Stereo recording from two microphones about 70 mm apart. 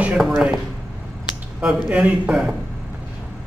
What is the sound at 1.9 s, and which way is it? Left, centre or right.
Speech, centre.